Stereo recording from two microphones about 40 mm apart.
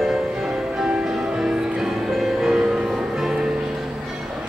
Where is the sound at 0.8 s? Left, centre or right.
Centre.